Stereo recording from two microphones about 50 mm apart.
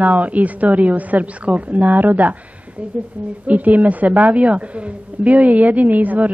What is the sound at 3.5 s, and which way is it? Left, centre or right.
Speech, right.